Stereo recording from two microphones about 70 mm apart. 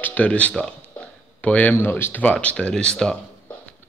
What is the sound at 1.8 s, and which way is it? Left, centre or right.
Speech, left.